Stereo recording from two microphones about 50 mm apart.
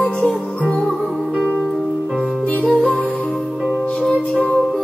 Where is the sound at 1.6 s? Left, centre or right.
Centre.